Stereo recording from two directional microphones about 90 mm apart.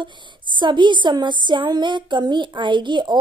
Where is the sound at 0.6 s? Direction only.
60° right (ahead or behind).